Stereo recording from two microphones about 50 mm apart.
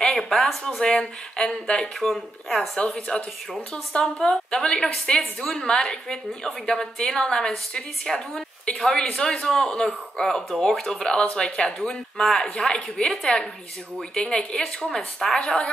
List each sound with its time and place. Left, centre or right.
0.0 s a sound: centre
0.9 s a woman's voice: centre
2.0 s a woman's voice: centre